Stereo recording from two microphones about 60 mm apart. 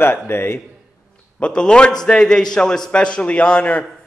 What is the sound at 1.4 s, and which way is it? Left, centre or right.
A man's voice, centre.